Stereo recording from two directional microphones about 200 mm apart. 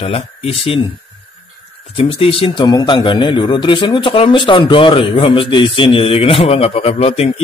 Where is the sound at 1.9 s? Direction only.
30° left (ahead or behind).